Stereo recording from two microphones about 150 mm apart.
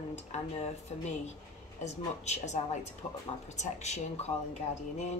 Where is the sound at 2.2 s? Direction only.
50° left (ahead or behind).